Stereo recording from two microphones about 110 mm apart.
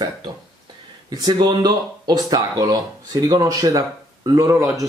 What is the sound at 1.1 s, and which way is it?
Speech, 40° right (ahead or behind).